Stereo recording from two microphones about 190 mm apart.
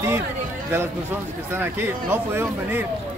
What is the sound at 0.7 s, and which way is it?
Speech, 15° right (ahead or behind).